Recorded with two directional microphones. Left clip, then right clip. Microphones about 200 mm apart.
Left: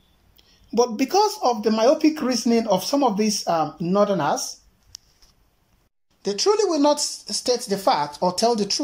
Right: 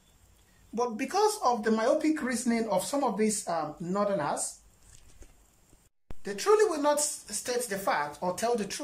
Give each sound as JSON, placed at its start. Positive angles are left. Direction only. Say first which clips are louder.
{"t": 0.7, "sound": "speech", "louder": "left 9 dB", "side_deg": 20}
{"t": 6.2, "sound": "speech", "louder": "left 4 dB", "side_deg": 15}